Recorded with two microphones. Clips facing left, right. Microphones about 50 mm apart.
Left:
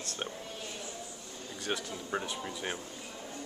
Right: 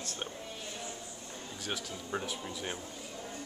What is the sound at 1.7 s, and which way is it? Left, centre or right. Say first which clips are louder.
Speech: left 3 dB; centre.